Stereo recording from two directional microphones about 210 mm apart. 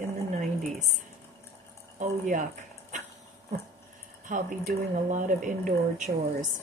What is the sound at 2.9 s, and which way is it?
Dog, 35° right (ahead or behind).